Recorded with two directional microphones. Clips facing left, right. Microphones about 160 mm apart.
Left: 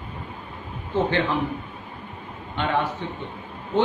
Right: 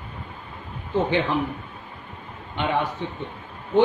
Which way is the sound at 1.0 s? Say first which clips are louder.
Right 1 dB; 15° right (ahead or behind).